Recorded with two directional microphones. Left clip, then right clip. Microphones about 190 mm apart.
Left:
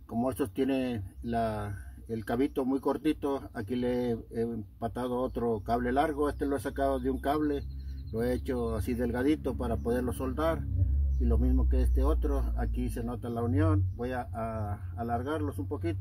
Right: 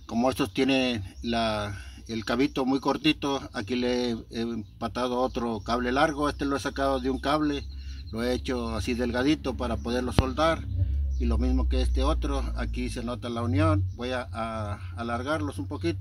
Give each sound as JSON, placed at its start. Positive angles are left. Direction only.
{"t": 0.1, "sound": "speech", "side_deg": -15}